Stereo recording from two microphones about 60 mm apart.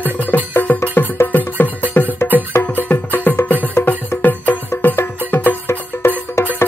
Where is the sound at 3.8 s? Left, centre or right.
Left.